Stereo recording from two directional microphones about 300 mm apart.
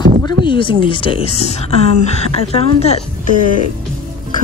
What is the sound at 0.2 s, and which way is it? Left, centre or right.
Speech, centre.